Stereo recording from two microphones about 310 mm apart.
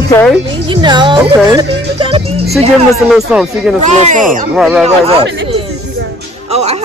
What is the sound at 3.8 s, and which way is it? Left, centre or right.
Speech, right.